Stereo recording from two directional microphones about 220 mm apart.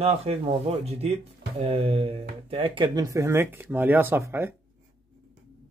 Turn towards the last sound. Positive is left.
turn(degrees=-10)  # may be behind; listen again after turning